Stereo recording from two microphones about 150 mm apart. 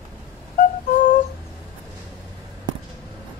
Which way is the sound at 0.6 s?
60° left (ahead or behind).